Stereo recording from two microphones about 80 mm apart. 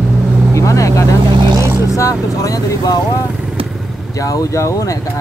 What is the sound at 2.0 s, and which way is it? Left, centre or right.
Speech, left.